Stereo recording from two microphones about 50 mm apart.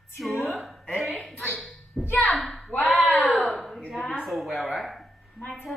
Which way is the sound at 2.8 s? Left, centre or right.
Left.